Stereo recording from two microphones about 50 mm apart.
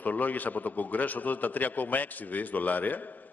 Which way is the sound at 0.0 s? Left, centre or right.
Left.